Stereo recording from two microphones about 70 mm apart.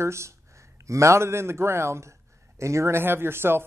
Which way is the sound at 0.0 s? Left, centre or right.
Right.